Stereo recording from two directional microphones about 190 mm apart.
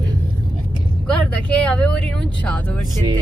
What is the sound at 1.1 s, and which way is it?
Speech, 5° left (ahead or behind).